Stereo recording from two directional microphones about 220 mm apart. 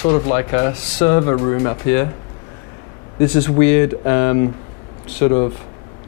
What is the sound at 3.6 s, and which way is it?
Speech, 10° left (ahead or behind).